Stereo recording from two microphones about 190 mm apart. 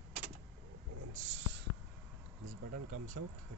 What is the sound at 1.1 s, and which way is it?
Snort, 75° right (ahead or behind).